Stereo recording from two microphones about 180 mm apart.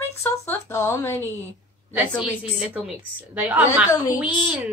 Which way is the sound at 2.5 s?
5° right (ahead or behind).